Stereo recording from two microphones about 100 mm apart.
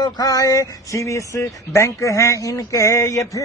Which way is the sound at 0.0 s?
40° left (ahead or behind).